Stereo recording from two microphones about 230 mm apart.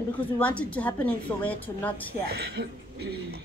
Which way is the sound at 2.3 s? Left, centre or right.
Right.